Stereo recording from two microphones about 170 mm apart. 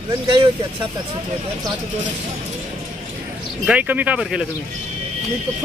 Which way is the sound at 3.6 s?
10° right (ahead or behind).